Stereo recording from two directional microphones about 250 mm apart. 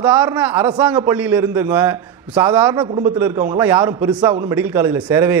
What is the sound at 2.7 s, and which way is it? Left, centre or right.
Speech, right.